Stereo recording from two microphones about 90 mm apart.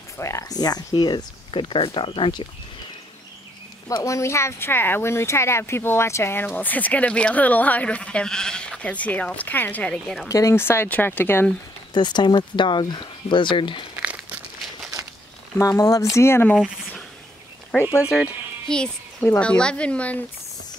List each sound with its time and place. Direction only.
0.2 s speech: 35° left (ahead or behind)
0.6 s speech: 45° left (ahead or behind); by 2.4 s 75° left (ahead or behind)
3.9 s speech: 35° left (ahead or behind); by 10.1 s 15° left (ahead or behind)
10.2 s speech: 35° left (ahead or behind)
11.9 s speech: 55° left (ahead or behind)
15.5 s speech: 35° left (ahead or behind)
18.0 s speech: 10° right (ahead or behind)
18.7 s speech: 10° left (ahead or behind)